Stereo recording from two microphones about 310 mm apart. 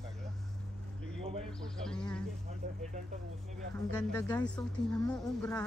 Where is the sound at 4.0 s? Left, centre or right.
Centre.